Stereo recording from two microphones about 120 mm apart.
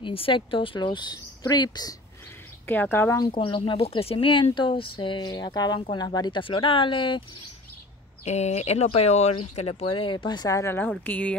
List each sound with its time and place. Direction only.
0.0 s speech: 45° left (ahead or behind)
2.6 s speech: 15° left (ahead or behind)
3.2 s speech: 45° left (ahead or behind)
8.3 s speech: 65° left (ahead or behind); by 10.9 s 20° left (ahead or behind)
10.9 s speech: 10° left (ahead or behind)